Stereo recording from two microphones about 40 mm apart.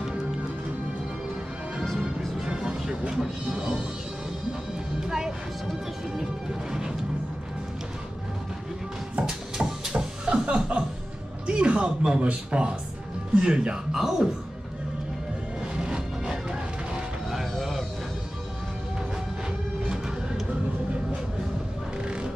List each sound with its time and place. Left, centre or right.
2.4 s music: centre
5.0 s music: centre
9.2 s music: centre
10.4 s music: right
11.4 s speech: right; by 14.3 s centre
15.7 s music: right
17.3 s music: centre
22.0 s music: right